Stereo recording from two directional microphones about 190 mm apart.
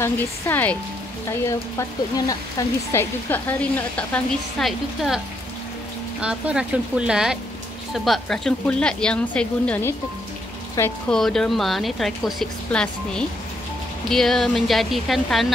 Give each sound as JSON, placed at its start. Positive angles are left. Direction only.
{"t": 0.0, "sound": "a woman's voice", "side_deg": 10}
{"t": 1.8, "sound": "a woman's voice", "side_deg": 15}
{"t": 6.2, "sound": "speech", "side_deg": -5}
{"t": 14.0, "sound": "speech", "side_deg": 0}